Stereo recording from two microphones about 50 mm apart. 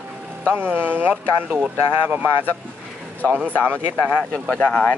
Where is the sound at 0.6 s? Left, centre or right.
Right.